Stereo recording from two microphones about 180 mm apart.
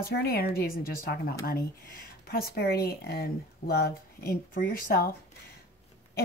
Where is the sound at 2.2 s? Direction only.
55° left (ahead or behind).